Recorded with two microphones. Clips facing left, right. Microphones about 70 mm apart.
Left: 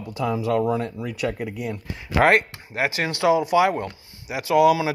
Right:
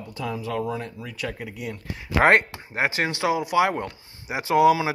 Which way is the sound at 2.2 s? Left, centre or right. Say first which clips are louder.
Even; right.